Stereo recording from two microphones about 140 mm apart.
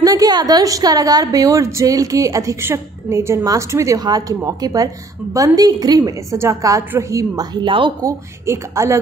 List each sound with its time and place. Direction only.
0.0 s a woman's voice: 25° right (ahead or behind)
8.0 s a woman's voice: 20° right (ahead or behind)